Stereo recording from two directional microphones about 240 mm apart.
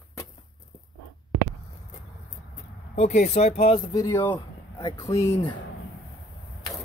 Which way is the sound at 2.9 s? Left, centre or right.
Left.